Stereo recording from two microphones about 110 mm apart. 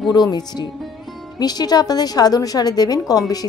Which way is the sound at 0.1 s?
40° left (ahead or behind).